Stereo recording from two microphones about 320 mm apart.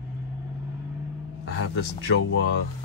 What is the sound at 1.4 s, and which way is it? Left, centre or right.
Speech, left.